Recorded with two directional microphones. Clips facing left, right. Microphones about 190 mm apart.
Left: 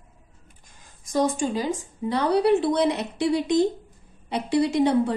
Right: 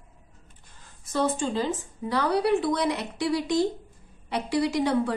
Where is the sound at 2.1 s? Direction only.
25° left (ahead or behind).